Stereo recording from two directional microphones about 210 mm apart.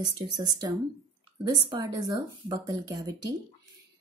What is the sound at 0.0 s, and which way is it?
A woman's voice, 20° right (ahead or behind).